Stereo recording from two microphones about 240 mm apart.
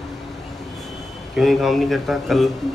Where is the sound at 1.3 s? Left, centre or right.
Centre.